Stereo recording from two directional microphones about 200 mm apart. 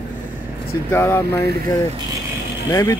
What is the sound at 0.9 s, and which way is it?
Speech, 10° left (ahead or behind).